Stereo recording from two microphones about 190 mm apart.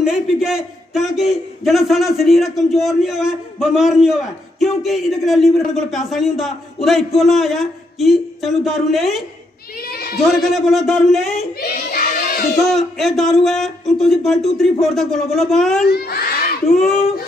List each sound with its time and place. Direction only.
0.0 s a man's voice: 5° right (ahead or behind)
9.8 s speech: 55° left (ahead or behind)
10.4 s a man's voice: centre (ahead or behind)
11.6 s crowd: 50° left (ahead or behind)
12.7 s a man's voice: centre (ahead or behind)
15.9 s crowd: 55° left (ahead or behind)
16.6 s a man's voice: centre (ahead or behind)